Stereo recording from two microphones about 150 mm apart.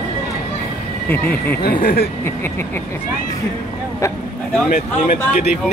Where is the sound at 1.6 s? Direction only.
90° left.